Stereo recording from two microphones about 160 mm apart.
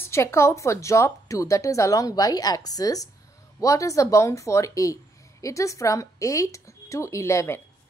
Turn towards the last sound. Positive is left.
turn(degrees=15)  # may be behind; listen again after turning